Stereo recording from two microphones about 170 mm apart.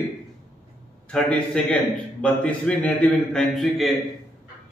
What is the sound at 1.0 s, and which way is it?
A man's voice, 5° left (ahead or behind).